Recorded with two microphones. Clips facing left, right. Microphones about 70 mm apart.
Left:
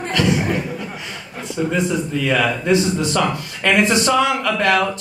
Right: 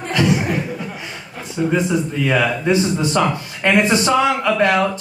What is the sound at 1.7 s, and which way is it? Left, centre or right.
Speech, centre.